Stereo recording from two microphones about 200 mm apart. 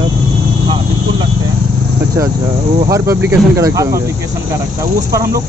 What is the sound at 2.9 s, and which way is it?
Speech, 10° right (ahead or behind).